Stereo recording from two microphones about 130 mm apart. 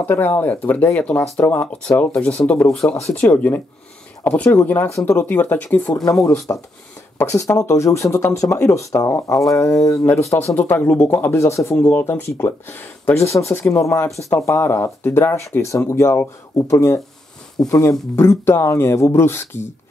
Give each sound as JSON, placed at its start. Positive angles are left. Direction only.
{"t": 0.0, "sound": "speech", "side_deg": 15}
{"t": 6.2, "sound": "speech", "side_deg": 25}